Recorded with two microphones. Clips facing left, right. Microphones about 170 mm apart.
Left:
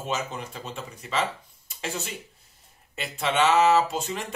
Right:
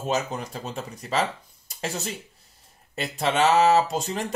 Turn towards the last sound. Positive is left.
turn(degrees=-35)  # may be behind; listen again after turning